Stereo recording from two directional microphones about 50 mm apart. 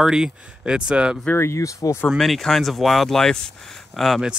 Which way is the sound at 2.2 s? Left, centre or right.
Centre.